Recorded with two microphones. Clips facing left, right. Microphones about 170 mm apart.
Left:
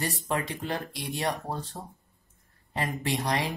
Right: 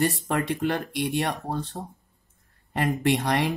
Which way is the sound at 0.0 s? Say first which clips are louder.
Right 6 dB; 60° right (ahead or behind).